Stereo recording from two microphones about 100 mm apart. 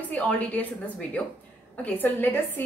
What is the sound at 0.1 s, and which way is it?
A woman's voice, 15° left (ahead or behind).